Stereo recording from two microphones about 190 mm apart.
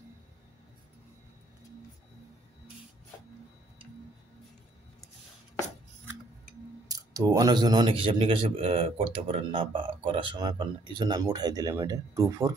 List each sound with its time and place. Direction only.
6.9 s speech: 20° right (ahead or behind)